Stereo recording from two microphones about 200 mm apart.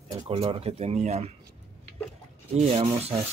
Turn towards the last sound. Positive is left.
turn(degrees=-30)  # may be behind; listen again after turning